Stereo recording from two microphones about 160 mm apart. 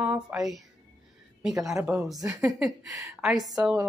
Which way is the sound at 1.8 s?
5° right (ahead or behind).